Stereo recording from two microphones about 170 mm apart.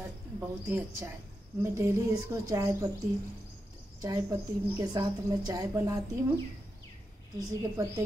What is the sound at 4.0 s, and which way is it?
A woman's voice, 20° right (ahead or behind).